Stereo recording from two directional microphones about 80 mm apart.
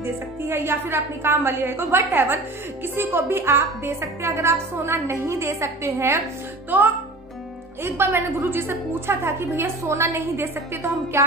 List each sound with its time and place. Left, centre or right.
0.0 s a woman's voice: right
6.7 s a woman's voice: right